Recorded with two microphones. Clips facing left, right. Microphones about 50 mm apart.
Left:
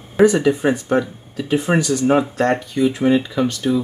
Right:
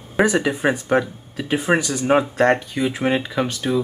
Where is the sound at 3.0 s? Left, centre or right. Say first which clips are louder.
Left 4 dB; right.